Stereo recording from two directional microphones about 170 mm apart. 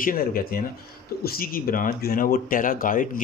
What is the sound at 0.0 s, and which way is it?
A man's voice, 55° left (ahead or behind).